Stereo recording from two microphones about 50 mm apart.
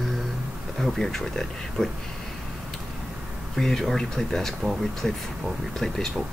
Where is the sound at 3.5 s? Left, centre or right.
Centre.